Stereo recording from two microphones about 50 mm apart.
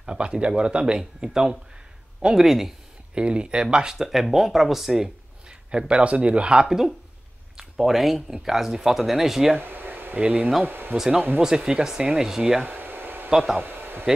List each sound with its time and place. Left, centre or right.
0.0 s speech: centre
3.2 s speech: centre
5.7 s speech: right
7.5 s speech: centre
9.6 s air conditioning: right
10.1 s speech: right
10.6 s speech: right
11.4 s speech: centre
12.6 s a sound: right